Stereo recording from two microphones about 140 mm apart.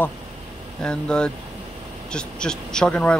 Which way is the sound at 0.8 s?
5° left (ahead or behind).